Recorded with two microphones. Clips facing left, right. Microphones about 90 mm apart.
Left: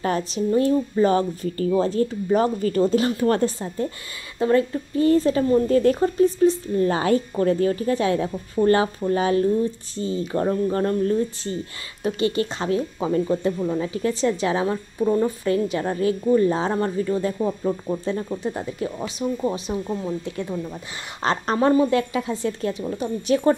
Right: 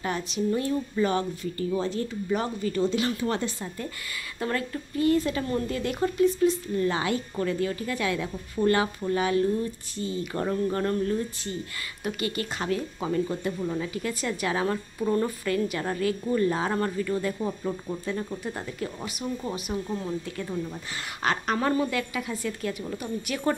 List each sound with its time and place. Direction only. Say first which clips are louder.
0.0 s speech: left 5 dB; 40° left (ahead or behind)
4.4 s a woman's voice: left 10 dB; 25° left (ahead or behind)